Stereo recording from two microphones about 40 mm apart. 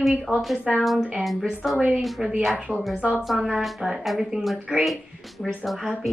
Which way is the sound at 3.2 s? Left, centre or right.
Centre.